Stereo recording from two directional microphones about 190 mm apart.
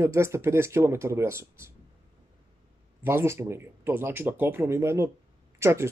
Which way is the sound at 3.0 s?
15° right (ahead or behind).